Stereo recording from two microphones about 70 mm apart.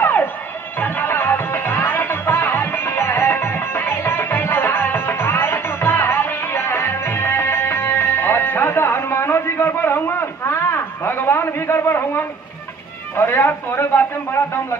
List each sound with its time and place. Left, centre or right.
0.0 s music: left
13.1 s speech: left